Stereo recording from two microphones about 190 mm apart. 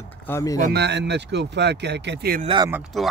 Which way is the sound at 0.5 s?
45° right (ahead or behind).